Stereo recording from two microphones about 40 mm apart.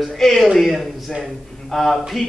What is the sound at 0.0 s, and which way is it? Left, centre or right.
A man's voice, centre.